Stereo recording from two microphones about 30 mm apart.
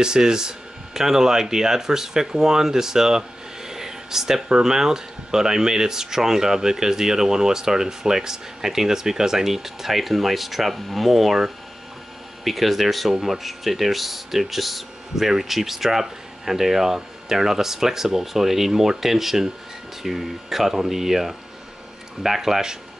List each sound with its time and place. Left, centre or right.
0.0 s speech: right